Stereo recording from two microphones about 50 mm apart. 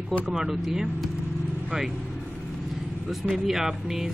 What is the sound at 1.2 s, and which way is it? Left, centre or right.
Vehicle, centre.